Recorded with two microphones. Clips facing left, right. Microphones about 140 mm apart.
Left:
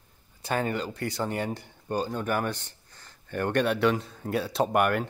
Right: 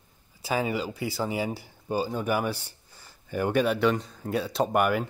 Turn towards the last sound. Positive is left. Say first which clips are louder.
# even
turn(degrees=0)  # may be behind; listen again after turning